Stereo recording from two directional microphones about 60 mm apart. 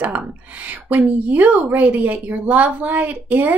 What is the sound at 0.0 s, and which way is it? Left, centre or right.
A woman's voice, right.